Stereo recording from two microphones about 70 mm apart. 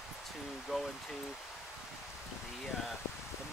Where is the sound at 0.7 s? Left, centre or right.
Centre.